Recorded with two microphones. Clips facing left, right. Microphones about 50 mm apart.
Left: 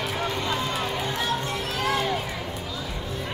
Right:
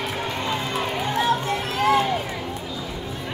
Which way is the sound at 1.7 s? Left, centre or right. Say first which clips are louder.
Right 7 dB; right.